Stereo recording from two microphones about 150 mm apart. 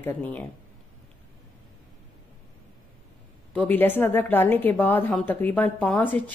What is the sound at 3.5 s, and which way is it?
A woman's voice, 10° left (ahead or behind).